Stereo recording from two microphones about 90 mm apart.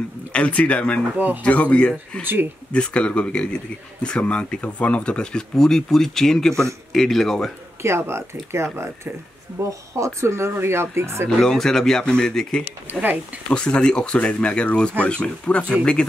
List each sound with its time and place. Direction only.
0.3 s speech: 15° left (ahead or behind)
1.1 s speech: 20° right (ahead or behind)
1.4 s speech: 15° left (ahead or behind)
7.8 s speech: 30° right (ahead or behind)
11.2 s speech: 5° left (ahead or behind)
12.9 s speech: 20° right (ahead or behind)
13.5 s speech: 10° left (ahead or behind)